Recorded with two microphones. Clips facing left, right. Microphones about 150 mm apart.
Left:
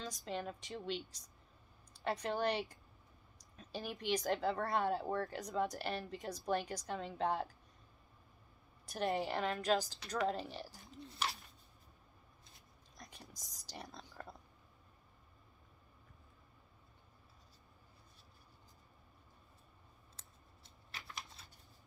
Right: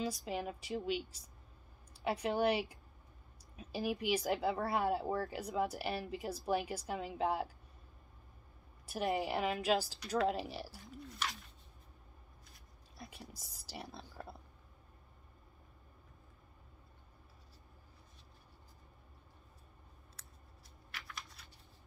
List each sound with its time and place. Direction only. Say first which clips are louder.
0.0 s a woman's voice: right 4 dB; 5° right (ahead or behind)
8.8 s a woman's voice: right 1 dB; 5° right (ahead or behind)
11.0 s a sound: left 1 dB; 30° left (ahead or behind)
12.9 s whispering: right 5 dB; 5° right (ahead or behind)
13.4 s a woman's voice: right 1 dB; 5° right (ahead or behind)
20.9 s a sound: even; 25° left (ahead or behind)